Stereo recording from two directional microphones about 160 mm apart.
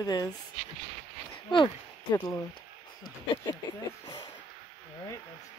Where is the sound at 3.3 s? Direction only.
30° left (ahead or behind).